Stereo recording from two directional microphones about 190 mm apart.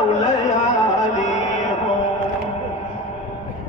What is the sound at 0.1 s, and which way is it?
Carnatic music, 40° left (ahead or behind).